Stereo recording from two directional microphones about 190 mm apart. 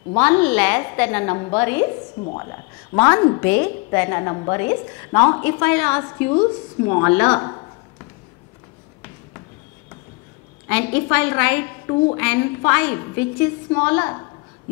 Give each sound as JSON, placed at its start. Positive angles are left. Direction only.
{"t": 0.2, "sound": "a woman's voice", "side_deg": 10}
{"t": 3.0, "sound": "a woman's voice", "side_deg": 15}
{"t": 10.7, "sound": "a woman's voice", "side_deg": 10}